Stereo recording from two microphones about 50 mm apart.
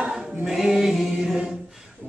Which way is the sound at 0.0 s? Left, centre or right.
Centre.